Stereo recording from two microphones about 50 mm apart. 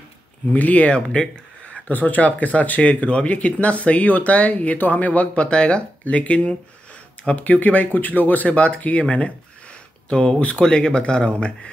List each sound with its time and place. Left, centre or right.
0.5 s speech: left
1.7 s speech: left
10.0 s speech: left